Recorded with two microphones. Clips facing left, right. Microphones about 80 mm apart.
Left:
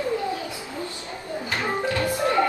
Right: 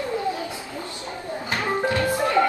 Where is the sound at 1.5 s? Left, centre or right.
Right.